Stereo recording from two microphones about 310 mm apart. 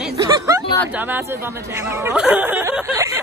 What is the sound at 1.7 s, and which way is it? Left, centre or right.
Speech, centre.